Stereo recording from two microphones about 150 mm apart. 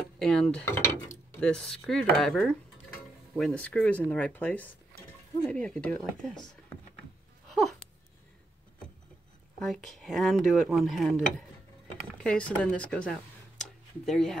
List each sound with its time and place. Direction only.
0.2 s speech: 5° left (ahead or behind)
0.7 s speech: 15° left (ahead or behind)
1.4 s speech: 5° left (ahead or behind)
9.6 s speech: centre (ahead or behind)